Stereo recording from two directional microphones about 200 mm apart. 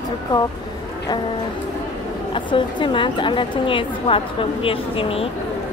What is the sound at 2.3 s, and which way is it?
A woman's voice, 25° left (ahead or behind).